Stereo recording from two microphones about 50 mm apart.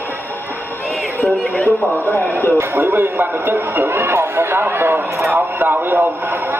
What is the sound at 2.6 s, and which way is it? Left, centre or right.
Speech, right.